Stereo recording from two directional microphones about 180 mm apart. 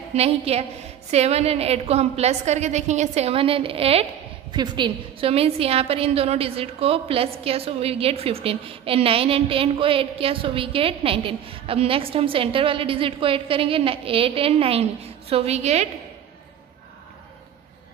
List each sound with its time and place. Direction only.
0.1 s a woman's voice: 35° right (ahead or behind)